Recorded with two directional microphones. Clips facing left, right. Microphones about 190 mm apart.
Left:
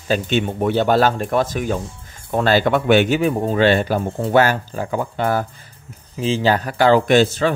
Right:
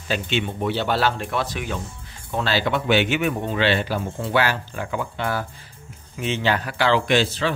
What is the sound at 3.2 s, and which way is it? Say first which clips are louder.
Speech: left 6 dB; 35° left (ahead or behind).